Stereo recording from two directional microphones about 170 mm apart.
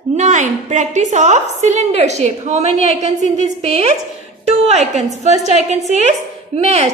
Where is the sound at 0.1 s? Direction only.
45° right (ahead or behind).